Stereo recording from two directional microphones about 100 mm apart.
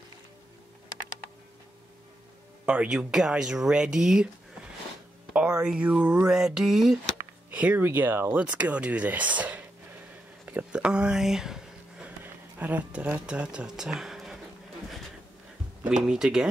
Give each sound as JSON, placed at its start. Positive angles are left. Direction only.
{"t": 2.6, "sound": "speech", "side_deg": -10}
{"t": 5.3, "sound": "speech", "side_deg": -10}
{"t": 7.5, "sound": "speech", "side_deg": -15}
{"t": 10.4, "sound": "a sound", "side_deg": -10}
{"t": 12.2, "sound": "speech", "side_deg": -15}
{"t": 15.8, "sound": "speech", "side_deg": -5}